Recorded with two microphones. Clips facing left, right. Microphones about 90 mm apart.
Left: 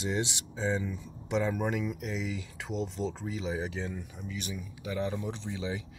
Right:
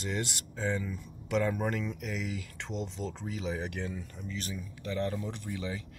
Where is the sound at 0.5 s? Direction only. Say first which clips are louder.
Left 2 dB; 15° left (ahead or behind).